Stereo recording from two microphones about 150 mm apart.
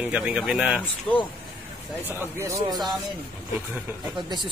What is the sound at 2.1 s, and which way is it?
Speech, 15° right (ahead or behind).